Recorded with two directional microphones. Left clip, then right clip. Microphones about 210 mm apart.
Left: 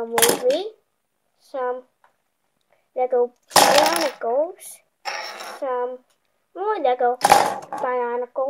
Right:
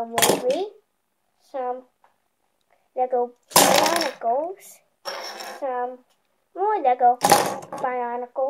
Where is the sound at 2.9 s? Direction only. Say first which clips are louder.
Left 3 dB; 45° left (ahead or behind).